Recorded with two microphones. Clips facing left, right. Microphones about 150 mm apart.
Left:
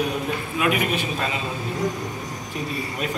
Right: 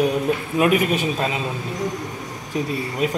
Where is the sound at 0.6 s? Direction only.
40° right (ahead or behind).